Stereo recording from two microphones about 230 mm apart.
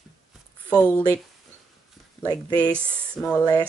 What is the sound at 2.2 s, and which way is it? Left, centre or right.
Speech, centre.